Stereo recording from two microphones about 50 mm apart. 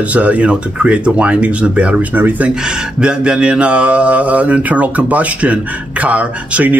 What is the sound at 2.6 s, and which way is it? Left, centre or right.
Speech, centre.